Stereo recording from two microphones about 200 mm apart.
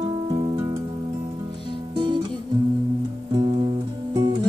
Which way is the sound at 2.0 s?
20° right (ahead or behind).